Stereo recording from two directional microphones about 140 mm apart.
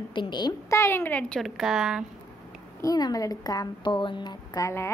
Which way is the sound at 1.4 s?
Centre (ahead or behind).